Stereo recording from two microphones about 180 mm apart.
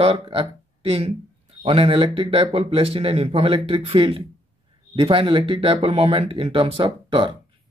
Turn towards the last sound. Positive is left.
turn(degrees=-30)  # may be behind; listen again after turning